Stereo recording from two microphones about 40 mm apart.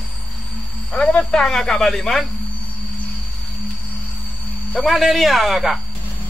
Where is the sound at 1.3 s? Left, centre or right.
Centre.